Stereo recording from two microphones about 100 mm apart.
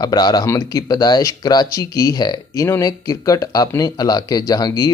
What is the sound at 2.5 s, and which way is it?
Speech, 30° left (ahead or behind).